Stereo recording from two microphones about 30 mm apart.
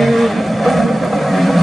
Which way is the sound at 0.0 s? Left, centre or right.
Centre.